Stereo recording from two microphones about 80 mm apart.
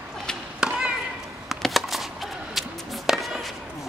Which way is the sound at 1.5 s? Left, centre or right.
Centre.